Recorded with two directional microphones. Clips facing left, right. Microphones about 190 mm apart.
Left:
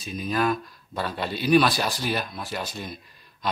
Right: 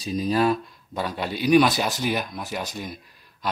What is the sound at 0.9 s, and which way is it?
Speech, 15° right (ahead or behind).